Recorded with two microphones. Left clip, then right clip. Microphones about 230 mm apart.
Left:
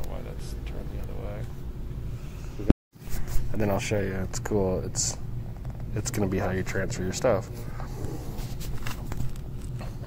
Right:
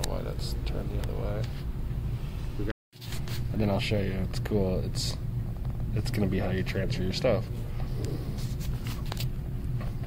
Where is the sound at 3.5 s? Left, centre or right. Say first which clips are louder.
Left 2 dB; centre.